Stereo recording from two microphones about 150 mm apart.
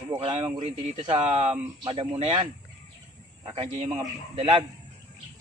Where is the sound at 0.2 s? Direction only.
40° right (ahead or behind).